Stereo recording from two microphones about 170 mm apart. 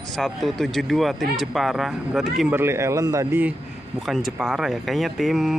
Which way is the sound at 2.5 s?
15° right (ahead or behind).